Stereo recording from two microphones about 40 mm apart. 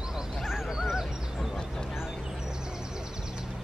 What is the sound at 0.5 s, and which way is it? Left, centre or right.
Goose, centre.